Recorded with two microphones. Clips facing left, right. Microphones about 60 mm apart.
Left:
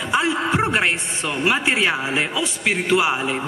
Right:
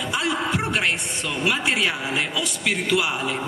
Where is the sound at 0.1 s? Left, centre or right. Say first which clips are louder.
Left 5 dB; left.